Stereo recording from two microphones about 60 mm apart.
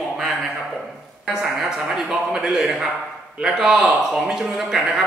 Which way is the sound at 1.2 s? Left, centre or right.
Centre.